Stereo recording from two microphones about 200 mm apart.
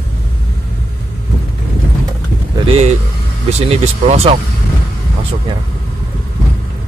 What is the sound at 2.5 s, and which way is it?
Speech, 30° right (ahead or behind).